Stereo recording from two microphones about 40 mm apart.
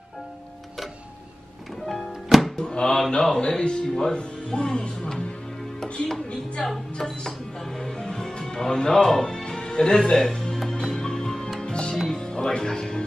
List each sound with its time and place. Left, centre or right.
2.0 s music: centre
2.5 s speech: left
4.1 s speech: left
6.6 s speech: centre
7.8 s music: centre
11.6 s music: left